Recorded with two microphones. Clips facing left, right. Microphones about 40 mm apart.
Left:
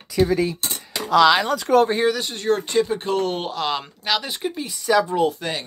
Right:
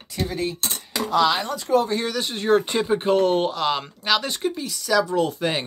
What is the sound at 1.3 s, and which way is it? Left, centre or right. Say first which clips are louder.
Speech: left 4 dB; left.